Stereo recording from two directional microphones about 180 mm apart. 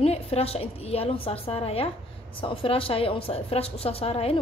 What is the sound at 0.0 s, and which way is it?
A woman's voice, 35° left (ahead or behind).